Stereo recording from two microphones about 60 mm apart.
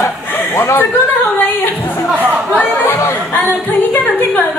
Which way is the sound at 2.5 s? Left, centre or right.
Left.